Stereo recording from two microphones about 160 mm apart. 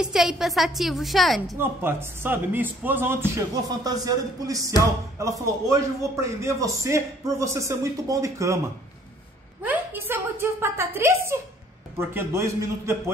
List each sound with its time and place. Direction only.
0.0 s a woman's voice: 5° right (ahead or behind)
1.6 s a man's voice: 15° right (ahead or behind)
9.6 s a sound: 10° right (ahead or behind)
12.0 s a man's voice: 15° right (ahead or behind)